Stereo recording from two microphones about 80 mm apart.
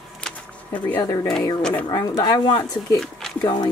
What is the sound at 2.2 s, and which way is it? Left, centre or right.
Speech, left.